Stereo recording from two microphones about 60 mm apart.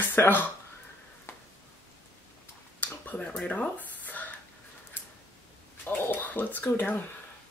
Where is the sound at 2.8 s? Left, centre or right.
Left.